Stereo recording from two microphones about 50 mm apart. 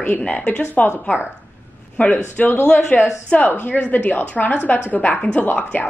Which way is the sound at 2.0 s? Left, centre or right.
Left.